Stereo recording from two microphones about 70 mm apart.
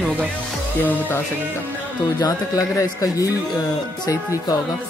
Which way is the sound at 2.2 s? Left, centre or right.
Left.